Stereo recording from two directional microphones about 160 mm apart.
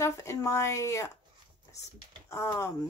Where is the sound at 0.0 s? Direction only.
15° left (ahead or behind).